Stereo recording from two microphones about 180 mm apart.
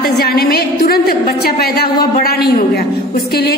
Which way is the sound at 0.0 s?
60° left (ahead or behind).